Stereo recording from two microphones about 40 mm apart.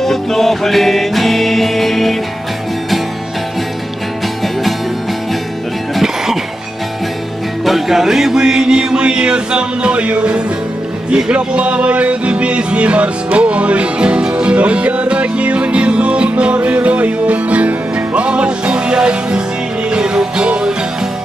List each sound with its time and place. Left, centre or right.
0.0 s music: centre
6.0 s music: centre
7.6 s music: centre; by 20.7 s right